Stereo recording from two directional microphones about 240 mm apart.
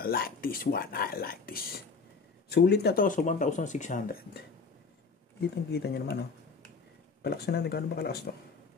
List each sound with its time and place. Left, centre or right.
0.0 s speech: left
5.7 s speech: left
7.2 s speech: left